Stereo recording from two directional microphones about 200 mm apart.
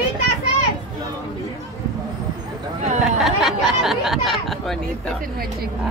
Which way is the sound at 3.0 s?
Centre (ahead or behind).